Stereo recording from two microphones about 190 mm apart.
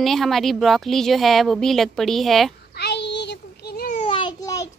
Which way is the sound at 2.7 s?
60° left (ahead or behind).